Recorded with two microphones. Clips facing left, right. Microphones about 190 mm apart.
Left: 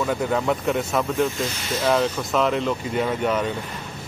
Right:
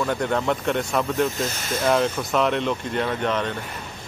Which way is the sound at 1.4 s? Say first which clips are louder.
Even; 45° right (ahead or behind).